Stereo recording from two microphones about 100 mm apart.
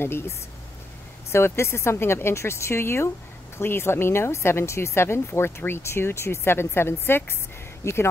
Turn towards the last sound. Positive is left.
turn(degrees=30)  # may be behind; listen again after turning